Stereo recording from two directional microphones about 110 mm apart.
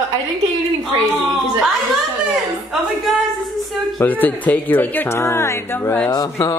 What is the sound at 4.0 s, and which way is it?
Speech, 15° left (ahead or behind).